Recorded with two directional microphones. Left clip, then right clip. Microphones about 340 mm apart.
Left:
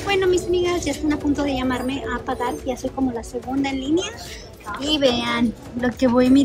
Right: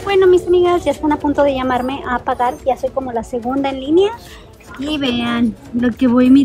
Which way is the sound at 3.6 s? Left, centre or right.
Centre.